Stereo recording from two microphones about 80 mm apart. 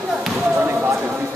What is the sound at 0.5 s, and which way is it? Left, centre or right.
Basketball bounce, right.